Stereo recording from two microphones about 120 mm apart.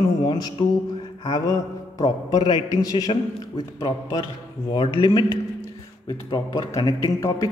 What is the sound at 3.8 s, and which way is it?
A man's voice, 45° left (ahead or behind).